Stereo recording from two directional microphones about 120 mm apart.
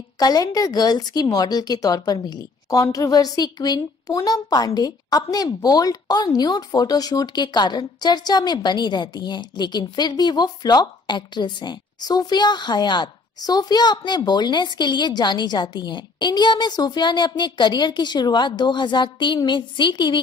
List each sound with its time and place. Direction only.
0.2 s a woman's voice: 30° left (ahead or behind)